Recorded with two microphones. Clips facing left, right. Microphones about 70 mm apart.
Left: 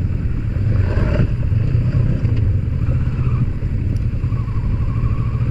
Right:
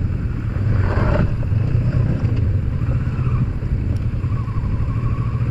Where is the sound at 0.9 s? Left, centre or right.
Right.